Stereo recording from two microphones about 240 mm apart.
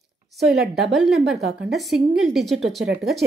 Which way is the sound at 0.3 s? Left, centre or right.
Centre.